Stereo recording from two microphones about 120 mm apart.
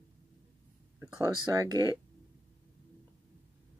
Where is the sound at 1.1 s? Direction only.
30° right (ahead or behind).